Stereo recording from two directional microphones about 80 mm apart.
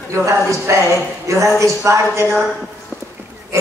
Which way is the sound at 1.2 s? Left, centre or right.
Right.